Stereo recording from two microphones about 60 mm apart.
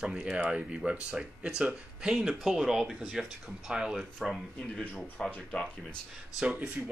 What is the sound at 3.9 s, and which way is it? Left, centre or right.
Speech, centre.